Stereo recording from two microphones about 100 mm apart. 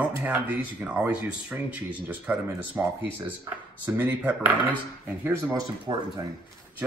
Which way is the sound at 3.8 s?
20° right (ahead or behind).